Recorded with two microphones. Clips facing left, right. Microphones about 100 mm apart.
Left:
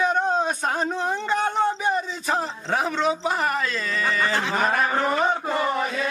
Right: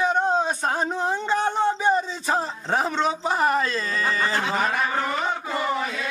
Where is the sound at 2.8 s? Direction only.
30° right (ahead or behind).